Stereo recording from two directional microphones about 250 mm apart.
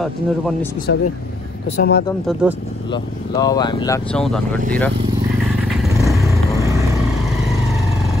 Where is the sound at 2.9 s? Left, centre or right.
Centre.